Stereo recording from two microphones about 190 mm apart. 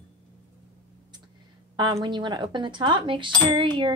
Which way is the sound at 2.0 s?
25° right (ahead or behind).